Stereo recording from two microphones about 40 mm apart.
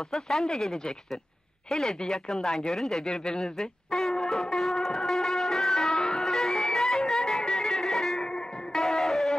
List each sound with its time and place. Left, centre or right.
0.1 s speech: centre
3.3 s music: centre
8.2 s music: centre
8.8 s a sound: centre